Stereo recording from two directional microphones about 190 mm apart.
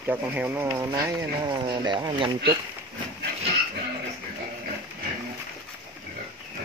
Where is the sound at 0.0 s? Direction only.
10° right (ahead or behind); by 2.3 s 25° right (ahead or behind).